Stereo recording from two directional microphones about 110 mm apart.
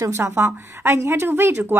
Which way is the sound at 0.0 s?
25° right (ahead or behind).